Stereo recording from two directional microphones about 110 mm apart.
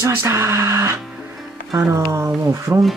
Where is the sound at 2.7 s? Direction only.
15° right (ahead or behind).